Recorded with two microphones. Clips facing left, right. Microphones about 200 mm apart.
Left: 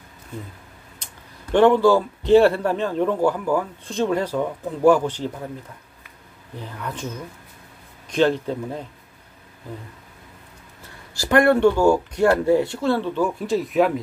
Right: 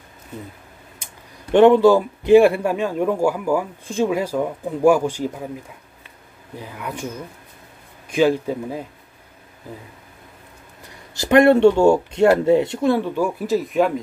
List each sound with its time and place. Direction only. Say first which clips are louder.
1.5 s a man's voice: right 3 dB; 20° right (ahead or behind)
6.5 s a man's voice: right 1 dB; 10° right (ahead or behind)
11.1 s speech: right 4 dB; 20° right (ahead or behind); by 13.9 s centre (ahead or behind)